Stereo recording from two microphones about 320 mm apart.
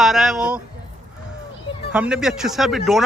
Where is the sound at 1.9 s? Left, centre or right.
Centre.